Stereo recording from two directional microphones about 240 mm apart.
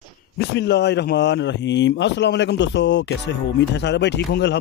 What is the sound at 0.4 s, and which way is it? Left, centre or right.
Speech, left.